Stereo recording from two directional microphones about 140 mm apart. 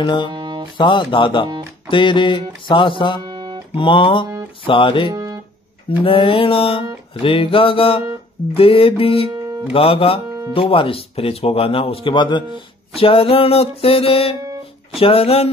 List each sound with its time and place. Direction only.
0.0 s mantra: 35° left (ahead or behind)
0.3 s music: 35° right (ahead or behind)
0.7 s mantra: 35° left (ahead or behind)
3.2 s guitar: 30° right (ahead or behind)
3.7 s mantra: 35° left (ahead or behind)
5.1 s music: 30° right (ahead or behind)
5.9 s mantra: 40° left (ahead or behind)
10.5 s speech: 40° left (ahead or behind)